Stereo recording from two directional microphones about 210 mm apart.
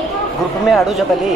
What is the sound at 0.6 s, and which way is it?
Speech, centre (ahead or behind).